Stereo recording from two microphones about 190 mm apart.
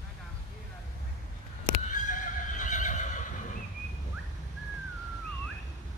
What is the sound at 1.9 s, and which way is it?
Neigh, 40° left (ahead or behind).